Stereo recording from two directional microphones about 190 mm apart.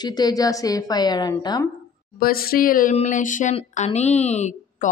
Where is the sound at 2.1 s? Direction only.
50° left (ahead or behind).